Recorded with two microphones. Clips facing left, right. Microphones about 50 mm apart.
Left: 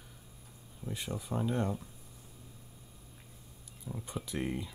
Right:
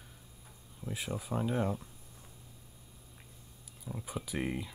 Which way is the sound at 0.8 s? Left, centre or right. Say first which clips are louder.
Right 1 dB; centre.